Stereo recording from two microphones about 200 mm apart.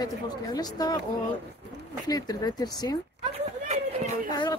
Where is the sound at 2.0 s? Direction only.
20° left (ahead or behind).